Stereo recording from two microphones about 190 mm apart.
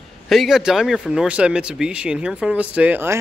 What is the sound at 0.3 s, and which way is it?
Speech, centre (ahead or behind).